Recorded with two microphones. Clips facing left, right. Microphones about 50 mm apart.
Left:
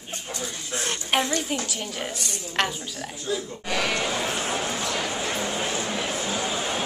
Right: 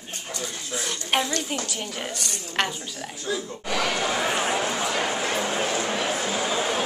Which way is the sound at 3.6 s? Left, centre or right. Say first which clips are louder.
Right 1 dB; right.